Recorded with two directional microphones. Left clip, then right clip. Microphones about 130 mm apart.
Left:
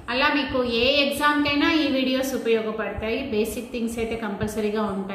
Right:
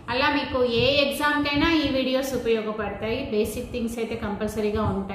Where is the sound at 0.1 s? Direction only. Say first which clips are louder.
Left 1 dB; 10° right (ahead or behind).